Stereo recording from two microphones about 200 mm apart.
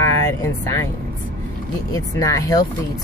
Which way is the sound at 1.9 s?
15° left (ahead or behind).